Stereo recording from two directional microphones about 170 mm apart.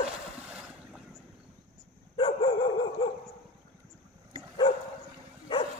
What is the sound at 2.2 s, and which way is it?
Dog, 35° left (ahead or behind).